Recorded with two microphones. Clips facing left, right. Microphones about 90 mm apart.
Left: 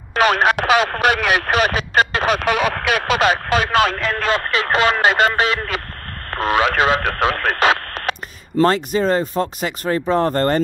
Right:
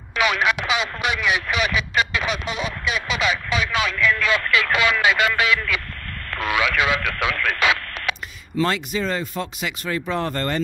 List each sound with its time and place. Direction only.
0.1 s speech: 45° left (ahead or behind)